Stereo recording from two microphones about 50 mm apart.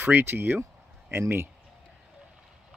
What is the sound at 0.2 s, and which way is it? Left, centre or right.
Speech, right.